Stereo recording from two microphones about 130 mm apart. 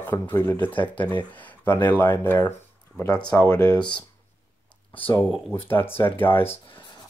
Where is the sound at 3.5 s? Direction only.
25° left (ahead or behind).